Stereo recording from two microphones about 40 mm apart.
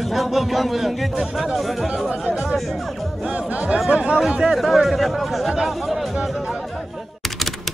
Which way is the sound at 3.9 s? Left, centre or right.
Right.